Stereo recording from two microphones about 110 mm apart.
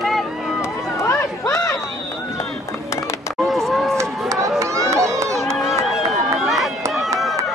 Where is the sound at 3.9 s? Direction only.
30° right (ahead or behind).